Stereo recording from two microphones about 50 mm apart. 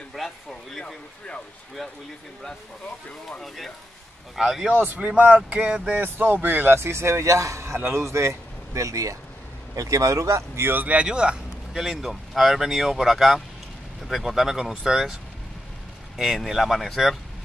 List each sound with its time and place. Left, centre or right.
0.1 s a sound: centre
3.4 s speech: centre
4.4 s speech: centre
4.7 s speech: right
5.9 s speech: right
6.9 s speech: right
10.6 s speech: right
11.0 s vehicle: centre
11.8 s speech: centre
16.2 s speech: centre